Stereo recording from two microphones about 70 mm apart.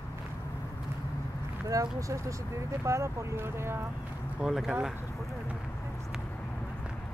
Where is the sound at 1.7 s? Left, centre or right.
Right.